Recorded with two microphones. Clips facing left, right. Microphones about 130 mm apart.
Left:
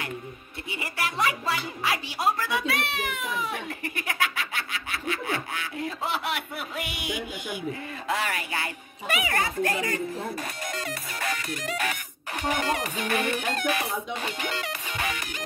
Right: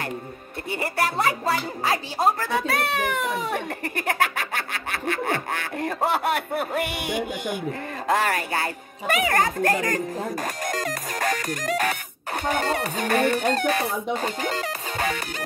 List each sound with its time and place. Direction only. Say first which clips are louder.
0.7 s a child's voice: right 7 dB; 45° right (ahead or behind)